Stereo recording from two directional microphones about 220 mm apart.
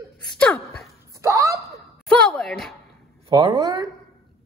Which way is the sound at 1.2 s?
15° right (ahead or behind).